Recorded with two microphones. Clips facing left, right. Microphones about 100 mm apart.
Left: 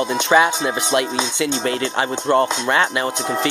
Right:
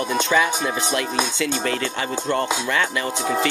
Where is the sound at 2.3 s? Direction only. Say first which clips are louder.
Left 7 dB; 45° left (ahead or behind).